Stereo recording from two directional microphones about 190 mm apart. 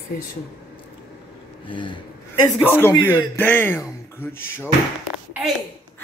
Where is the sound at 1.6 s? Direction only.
25° left (ahead or behind).